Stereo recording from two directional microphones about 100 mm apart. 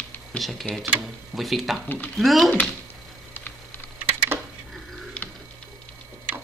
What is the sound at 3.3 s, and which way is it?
Typing, 20° left (ahead or behind).